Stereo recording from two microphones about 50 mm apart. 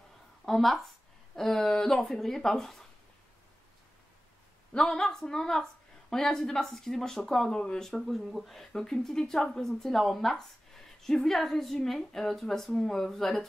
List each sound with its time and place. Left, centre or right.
0.5 s a woman's voice: centre
4.7 s a woman's voice: centre